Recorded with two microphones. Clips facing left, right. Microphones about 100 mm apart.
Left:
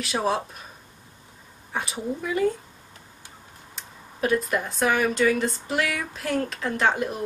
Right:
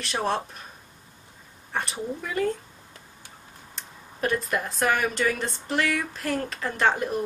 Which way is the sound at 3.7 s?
Centre (ahead or behind).